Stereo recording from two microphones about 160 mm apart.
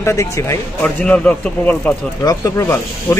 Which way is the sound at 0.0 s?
20° left (ahead or behind).